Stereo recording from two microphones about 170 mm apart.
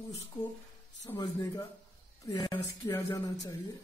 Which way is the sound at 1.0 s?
25° left (ahead or behind).